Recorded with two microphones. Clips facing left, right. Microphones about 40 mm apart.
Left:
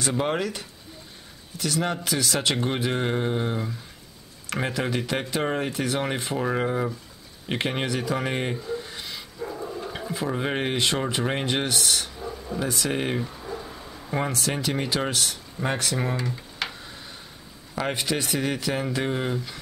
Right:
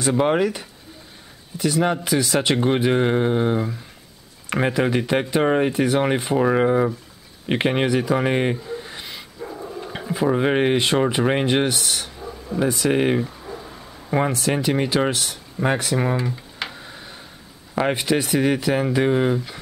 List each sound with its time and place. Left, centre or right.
0.0 s speech: centre
12.9 s speech: centre
13.2 s speech: centre
15.6 s a sound: centre
17.7 s speech: centre